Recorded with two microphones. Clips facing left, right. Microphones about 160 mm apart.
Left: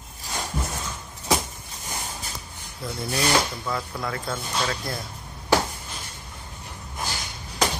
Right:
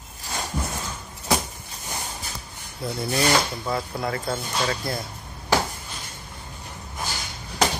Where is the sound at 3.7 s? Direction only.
25° right (ahead or behind).